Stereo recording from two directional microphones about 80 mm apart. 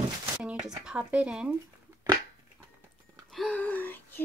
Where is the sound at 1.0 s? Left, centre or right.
Centre.